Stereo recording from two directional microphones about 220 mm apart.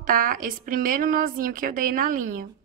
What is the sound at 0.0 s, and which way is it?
A woman's voice, 40° right (ahead or behind).